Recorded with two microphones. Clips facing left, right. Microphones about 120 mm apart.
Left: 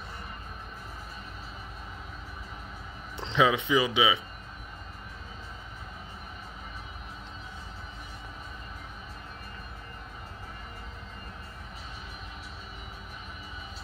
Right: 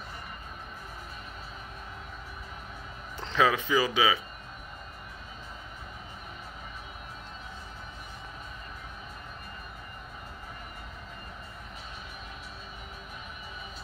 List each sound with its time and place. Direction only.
3.2 s speech: 20° left (ahead or behind)